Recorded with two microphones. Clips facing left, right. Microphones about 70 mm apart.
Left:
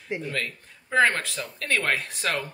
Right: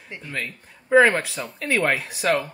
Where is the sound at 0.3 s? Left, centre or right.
Centre.